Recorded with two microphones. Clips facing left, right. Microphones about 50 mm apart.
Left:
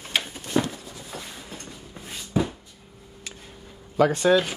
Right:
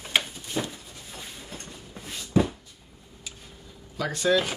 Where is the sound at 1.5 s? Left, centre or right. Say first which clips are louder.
Left 1 dB; centre.